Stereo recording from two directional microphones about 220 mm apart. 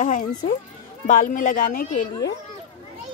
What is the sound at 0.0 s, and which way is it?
Speech, 35° left (ahead or behind).